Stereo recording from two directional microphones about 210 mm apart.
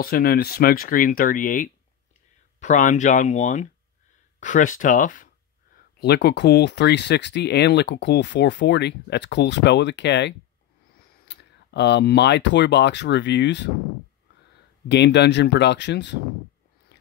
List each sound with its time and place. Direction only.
0.0 s speech: 45° left (ahead or behind)
5.9 s speech: 50° left (ahead or behind)
14.9 s speech: 55° left (ahead or behind)